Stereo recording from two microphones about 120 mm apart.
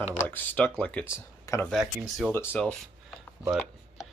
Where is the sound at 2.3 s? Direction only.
20° left (ahead or behind).